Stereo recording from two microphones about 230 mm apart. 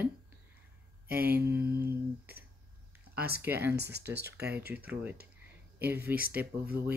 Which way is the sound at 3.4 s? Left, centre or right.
Centre.